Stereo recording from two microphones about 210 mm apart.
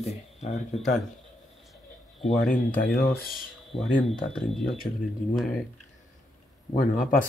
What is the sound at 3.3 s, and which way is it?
Speech, centre (ahead or behind).